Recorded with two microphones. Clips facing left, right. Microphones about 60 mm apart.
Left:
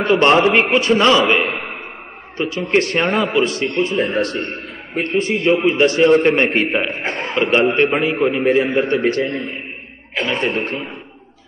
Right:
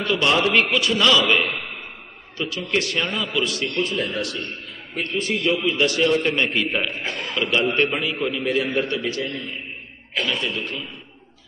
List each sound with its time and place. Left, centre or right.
0.0 s a man's voice: left
3.4 s a man's voice: left
8.9 s a man's voice: left